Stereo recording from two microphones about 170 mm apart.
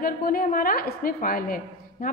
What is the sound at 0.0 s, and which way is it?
A woman's voice, 55° left (ahead or behind).